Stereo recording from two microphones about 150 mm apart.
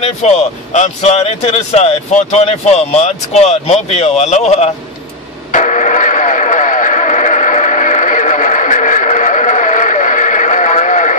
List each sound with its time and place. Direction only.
0.0 s speech: 45° left (ahead or behind)
5.5 s radio: 55° left (ahead or behind)